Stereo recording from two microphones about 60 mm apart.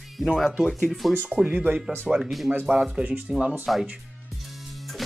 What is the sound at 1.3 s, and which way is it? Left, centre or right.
Speech, centre.